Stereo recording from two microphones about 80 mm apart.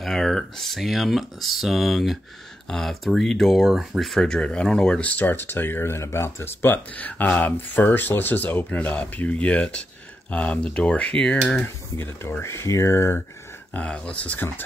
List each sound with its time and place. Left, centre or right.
0.0 s speech: centre
12.0 s speech: left
13.7 s speech: centre